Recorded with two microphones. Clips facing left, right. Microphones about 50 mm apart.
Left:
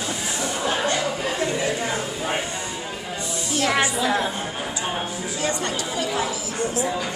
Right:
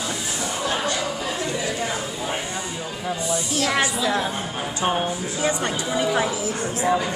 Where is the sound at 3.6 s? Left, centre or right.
Centre.